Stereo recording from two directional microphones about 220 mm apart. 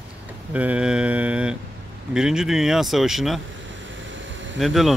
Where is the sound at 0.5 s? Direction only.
5° right (ahead or behind).